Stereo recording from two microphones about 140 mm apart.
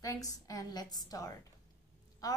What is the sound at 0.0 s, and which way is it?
A woman's voice, 25° left (ahead or behind).